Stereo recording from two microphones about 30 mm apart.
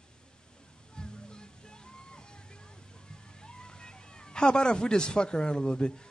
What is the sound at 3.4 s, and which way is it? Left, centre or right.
Music, left.